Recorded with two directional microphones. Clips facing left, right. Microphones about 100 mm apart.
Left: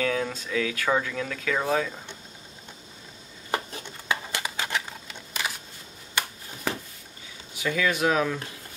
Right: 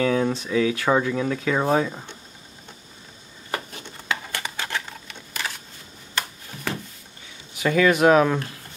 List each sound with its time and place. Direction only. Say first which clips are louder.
0.0 s speech: right 6 dB; 20° right (ahead or behind)
4.1 s a sound: even; 15° left (ahead or behind)
7.6 s speech: right 7 dB; 60° right (ahead or behind)